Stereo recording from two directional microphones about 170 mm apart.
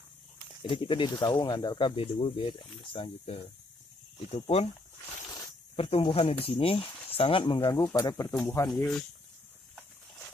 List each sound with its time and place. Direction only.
0.6 s speech: 30° left (ahead or behind)
5.8 s speech: 35° left (ahead or behind)
8.3 s speech: 5° left (ahead or behind)